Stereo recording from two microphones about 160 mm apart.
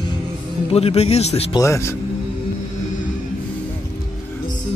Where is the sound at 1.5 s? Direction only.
20° left (ahead or behind).